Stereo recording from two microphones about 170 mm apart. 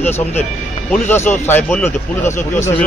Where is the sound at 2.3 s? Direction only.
45° left (ahead or behind).